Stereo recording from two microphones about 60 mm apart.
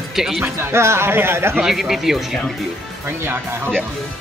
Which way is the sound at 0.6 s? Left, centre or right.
Right.